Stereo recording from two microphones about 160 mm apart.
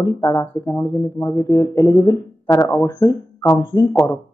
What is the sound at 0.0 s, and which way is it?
Speech, 20° left (ahead or behind).